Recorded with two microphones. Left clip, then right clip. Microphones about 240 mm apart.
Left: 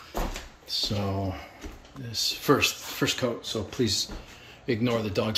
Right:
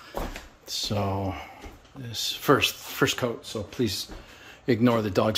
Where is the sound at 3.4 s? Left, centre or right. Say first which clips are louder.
Left 1 dB; right.